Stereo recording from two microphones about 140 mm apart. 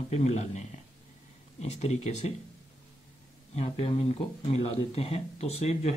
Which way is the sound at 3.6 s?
45° left (ahead or behind).